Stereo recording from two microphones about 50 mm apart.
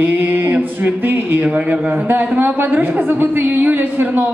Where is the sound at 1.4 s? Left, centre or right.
Right.